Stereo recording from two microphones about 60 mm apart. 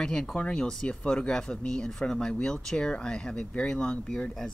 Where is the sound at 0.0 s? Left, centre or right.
Centre.